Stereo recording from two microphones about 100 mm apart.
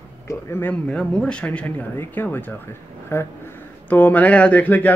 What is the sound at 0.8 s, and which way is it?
Speech, 10° left (ahead or behind).